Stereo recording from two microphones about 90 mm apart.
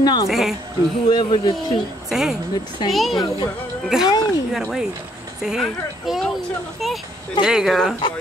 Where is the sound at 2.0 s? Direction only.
5° right (ahead or behind).